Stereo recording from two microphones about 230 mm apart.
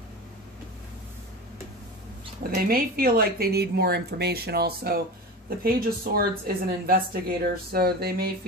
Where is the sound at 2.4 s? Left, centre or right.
Right.